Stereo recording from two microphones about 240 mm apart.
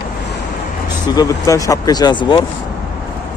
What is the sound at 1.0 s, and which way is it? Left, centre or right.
Speech, centre.